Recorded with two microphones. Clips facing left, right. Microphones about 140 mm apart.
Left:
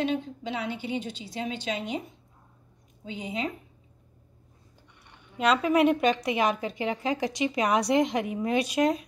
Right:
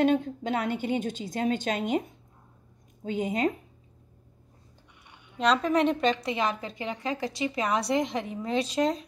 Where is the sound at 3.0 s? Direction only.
50° right (ahead or behind).